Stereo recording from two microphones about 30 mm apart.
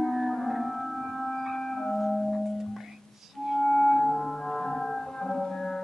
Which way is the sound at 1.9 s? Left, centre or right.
Centre.